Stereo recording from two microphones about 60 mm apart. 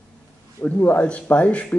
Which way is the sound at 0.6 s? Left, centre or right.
Left.